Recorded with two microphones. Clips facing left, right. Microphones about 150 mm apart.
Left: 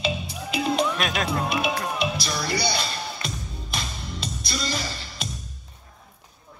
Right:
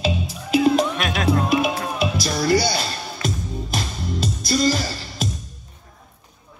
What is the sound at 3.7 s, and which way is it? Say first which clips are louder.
Music: right 6 dB; 45° right (ahead or behind).